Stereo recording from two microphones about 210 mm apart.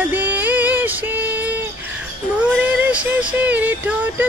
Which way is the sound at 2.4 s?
5° right (ahead or behind).